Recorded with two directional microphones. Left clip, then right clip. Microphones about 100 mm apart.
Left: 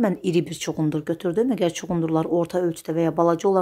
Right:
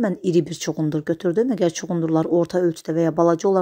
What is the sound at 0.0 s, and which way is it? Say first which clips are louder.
Speech: right 2 dB; 35° right (ahead or behind).